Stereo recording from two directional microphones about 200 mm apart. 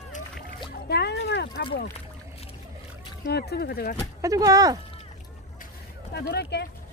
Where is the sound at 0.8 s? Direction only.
55° left (ahead or behind).